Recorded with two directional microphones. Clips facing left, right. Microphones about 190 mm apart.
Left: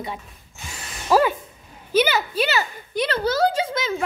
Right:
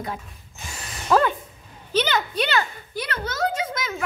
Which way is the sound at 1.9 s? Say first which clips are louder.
Left 3 dB; 10° left (ahead or behind).